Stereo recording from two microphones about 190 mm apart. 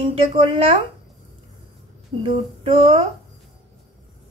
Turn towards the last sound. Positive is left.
turn(degrees=-30)  # may be behind; listen again after turning